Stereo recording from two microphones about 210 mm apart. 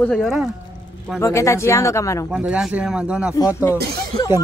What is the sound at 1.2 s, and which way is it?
Speech, 15° left (ahead or behind).